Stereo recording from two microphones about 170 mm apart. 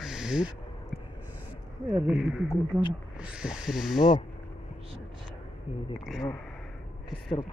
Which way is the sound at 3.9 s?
25° left (ahead or behind).